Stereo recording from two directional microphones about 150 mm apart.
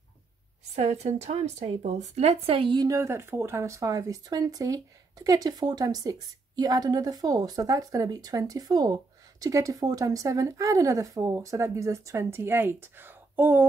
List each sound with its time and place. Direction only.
0.7 s a woman's voice: 45° right (ahead or behind); by 13.7 s 15° right (ahead or behind)